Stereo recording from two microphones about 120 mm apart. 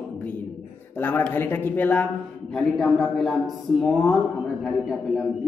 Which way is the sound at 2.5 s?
Centre (ahead or behind).